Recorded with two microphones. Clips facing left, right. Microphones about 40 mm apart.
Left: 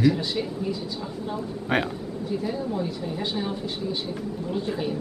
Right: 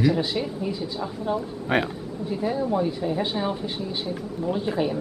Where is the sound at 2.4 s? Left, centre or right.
Centre.